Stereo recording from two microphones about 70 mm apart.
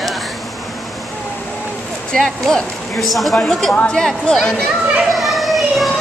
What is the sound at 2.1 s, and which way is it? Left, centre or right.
A woman's voice, centre.